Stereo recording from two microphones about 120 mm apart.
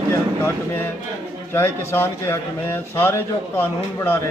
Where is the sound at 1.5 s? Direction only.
20° left (ahead or behind).